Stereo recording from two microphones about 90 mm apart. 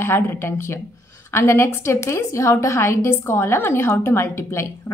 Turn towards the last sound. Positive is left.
turn(degrees=30)  # may be behind; listen again after turning